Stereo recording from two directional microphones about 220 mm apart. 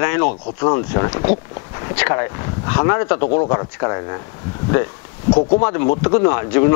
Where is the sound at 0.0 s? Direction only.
15° left (ahead or behind).